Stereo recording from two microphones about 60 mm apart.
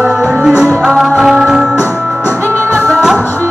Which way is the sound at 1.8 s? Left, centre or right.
Left.